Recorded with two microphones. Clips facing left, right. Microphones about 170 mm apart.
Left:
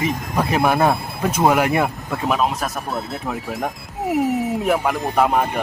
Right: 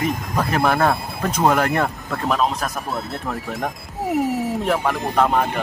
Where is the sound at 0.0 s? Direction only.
5° left (ahead or behind).